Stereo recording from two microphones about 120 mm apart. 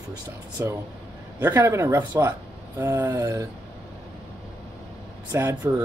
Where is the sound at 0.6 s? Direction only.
25° right (ahead or behind).